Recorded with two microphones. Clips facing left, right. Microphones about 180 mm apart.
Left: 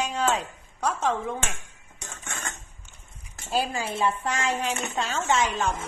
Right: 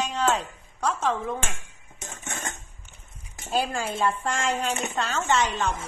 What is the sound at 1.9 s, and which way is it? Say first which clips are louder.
Dishes: right 2 dB; 20° right (ahead or behind).